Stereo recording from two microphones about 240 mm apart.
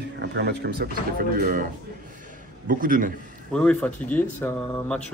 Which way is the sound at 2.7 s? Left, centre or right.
Right.